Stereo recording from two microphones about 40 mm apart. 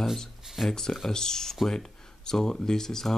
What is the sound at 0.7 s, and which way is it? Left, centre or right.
Speech, centre.